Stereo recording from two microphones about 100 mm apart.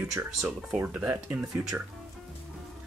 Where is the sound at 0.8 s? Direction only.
15° right (ahead or behind).